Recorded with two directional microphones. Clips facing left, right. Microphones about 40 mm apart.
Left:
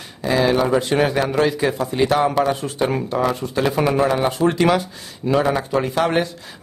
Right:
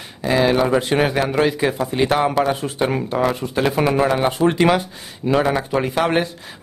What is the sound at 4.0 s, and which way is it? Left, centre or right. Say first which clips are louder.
A man's voice: right 1 dB; right.